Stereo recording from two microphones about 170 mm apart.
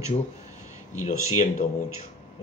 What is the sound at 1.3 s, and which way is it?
Speech, 45° left (ahead or behind).